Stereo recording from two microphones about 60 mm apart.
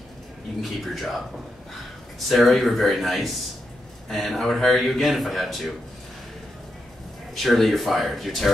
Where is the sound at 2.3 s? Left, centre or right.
Centre.